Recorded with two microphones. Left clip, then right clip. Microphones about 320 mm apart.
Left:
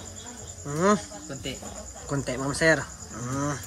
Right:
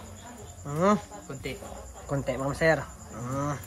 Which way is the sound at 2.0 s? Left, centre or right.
Centre.